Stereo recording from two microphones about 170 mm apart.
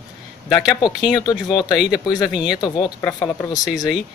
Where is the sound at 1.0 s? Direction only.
Centre (ahead or behind).